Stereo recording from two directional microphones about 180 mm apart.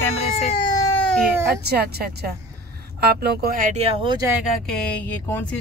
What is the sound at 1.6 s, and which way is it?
Speech, 60° right (ahead or behind).